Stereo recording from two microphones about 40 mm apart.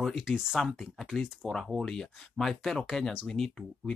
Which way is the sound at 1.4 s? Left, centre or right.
Centre.